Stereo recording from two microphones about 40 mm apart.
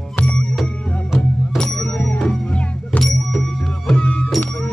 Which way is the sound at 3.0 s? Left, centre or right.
Centre.